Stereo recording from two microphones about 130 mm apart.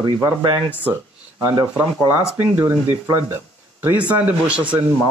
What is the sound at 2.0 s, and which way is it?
Speech, 15° right (ahead or behind).